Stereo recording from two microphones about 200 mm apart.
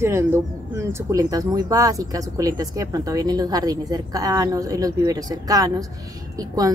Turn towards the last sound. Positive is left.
turn(degrees=-20)  # may be behind; listen again after turning